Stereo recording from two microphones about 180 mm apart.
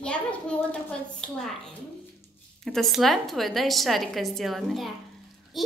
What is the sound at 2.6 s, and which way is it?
A woman's voice, centre (ahead or behind).